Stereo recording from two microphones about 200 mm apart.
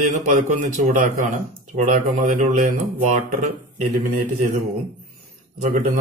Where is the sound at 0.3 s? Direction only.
40° right (ahead or behind).